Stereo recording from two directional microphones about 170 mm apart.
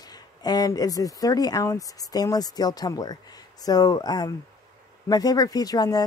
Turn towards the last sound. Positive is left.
turn(degrees=20)  # may be behind; listen again after turning